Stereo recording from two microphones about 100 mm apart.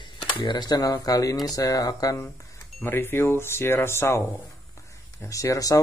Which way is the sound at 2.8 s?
20° left (ahead or behind).